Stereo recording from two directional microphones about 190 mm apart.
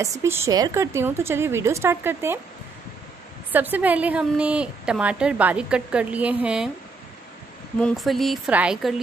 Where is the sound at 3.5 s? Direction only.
10° right (ahead or behind).